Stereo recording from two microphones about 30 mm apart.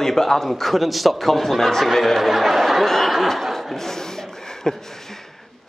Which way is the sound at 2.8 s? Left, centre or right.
Centre.